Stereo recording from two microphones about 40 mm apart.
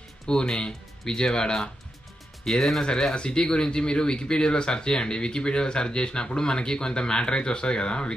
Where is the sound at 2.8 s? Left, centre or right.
Left.